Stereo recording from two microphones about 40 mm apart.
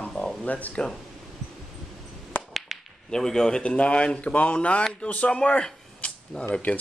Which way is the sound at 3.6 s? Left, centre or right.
Left.